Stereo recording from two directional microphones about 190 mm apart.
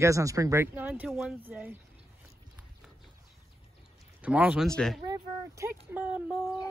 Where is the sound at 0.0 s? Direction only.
15° right (ahead or behind).